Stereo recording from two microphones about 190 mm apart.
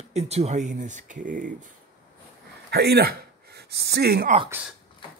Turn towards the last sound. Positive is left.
turn(degrees=-55)  # may be behind; listen again after turning